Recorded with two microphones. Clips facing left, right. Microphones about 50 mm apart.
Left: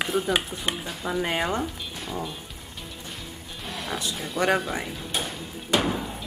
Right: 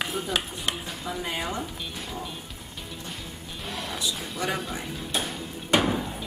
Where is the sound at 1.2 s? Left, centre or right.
Left.